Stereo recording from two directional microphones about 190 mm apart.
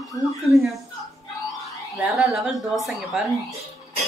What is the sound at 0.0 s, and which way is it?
Speech, 20° left (ahead or behind).